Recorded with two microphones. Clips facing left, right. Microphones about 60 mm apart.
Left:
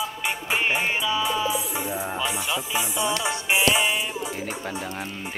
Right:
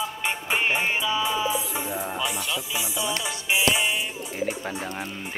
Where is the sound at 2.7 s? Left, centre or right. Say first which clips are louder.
Left 5 dB; left.